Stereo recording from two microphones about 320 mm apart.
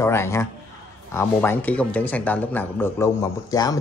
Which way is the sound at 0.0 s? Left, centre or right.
Centre.